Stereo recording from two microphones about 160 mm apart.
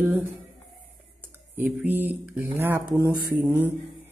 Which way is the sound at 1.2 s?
10° right (ahead or behind).